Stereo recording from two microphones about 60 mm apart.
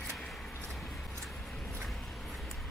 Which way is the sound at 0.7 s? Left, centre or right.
Centre.